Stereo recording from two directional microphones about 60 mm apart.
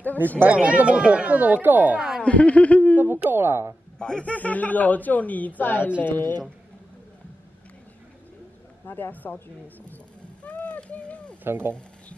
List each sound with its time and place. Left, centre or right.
0.4 s speech: right
2.0 s speech: centre
2.2 s speech: left
3.0 s speech: right
4.0 s speech: centre; by 6.3 s left
8.8 s speech: left
10.4 s a sound: left
11.4 s speech: right